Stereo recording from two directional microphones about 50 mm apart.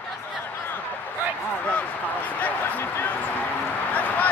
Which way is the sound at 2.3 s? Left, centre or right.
Left.